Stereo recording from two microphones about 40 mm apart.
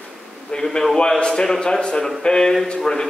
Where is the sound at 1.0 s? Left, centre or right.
Centre.